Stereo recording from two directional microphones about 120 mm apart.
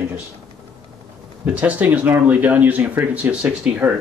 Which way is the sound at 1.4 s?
10° right (ahead or behind).